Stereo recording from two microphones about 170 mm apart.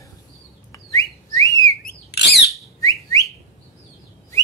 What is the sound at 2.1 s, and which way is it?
Squawk, 80° left.